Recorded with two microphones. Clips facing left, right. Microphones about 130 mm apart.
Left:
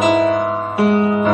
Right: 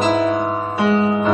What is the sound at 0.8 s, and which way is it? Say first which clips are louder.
Music: left 1 dB; 60° left (ahead or behind).